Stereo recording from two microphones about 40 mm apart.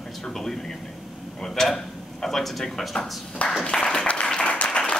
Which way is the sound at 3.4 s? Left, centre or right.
Left.